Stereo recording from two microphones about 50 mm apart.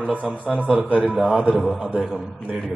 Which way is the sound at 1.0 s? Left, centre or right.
Centre.